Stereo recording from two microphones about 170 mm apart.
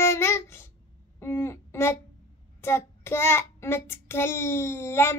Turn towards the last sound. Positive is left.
turn(degrees=15)  # may be behind; listen again after turning